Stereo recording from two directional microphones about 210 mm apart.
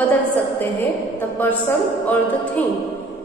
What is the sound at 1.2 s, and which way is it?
A woman's voice, 10° left (ahead or behind).